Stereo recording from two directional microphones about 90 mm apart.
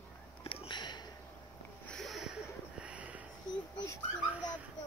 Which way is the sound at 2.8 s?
15° right (ahead or behind).